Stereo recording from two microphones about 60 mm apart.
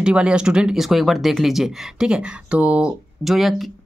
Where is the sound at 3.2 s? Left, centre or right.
Centre.